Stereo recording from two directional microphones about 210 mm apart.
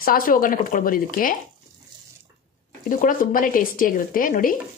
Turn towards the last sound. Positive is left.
turn(degrees=40)  # may be behind; listen again after turning